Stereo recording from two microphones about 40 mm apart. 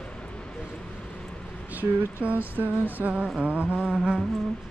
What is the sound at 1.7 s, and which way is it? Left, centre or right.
Music, right.